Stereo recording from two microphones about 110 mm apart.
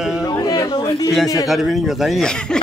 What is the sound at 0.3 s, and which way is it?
Chatter, 35° left (ahead or behind).